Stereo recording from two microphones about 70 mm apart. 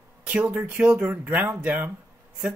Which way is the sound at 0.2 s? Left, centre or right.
Centre.